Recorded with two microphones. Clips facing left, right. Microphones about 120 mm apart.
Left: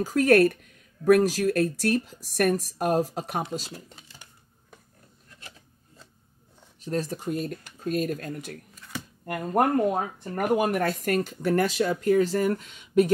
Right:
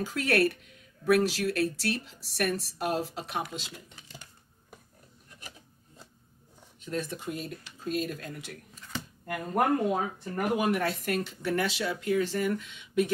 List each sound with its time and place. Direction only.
0.0 s speech: 45° left (ahead or behind)
6.8 s speech: 35° left (ahead or behind)